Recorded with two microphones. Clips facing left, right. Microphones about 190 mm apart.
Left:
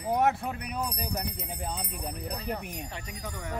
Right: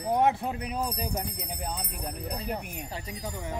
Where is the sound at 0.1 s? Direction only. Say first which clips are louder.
Right 1 dB; 20° right (ahead or behind).